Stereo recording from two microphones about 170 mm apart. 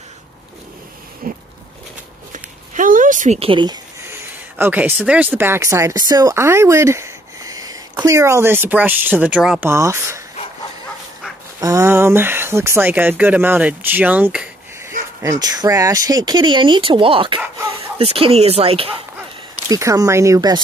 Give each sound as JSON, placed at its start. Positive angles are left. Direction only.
{"t": 1.2, "sound": "a sound", "side_deg": -60}
{"t": 4.6, "sound": "speech", "side_deg": -10}
{"t": 9.7, "sound": "speech", "side_deg": -15}
{"t": 11.6, "sound": "speech", "side_deg": -15}
{"t": 15.2, "sound": "speech", "side_deg": -25}
{"t": 19.7, "sound": "speech", "side_deg": -20}